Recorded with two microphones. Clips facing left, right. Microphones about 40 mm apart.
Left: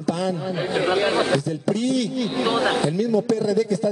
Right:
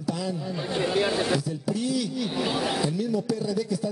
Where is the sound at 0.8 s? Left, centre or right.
Left.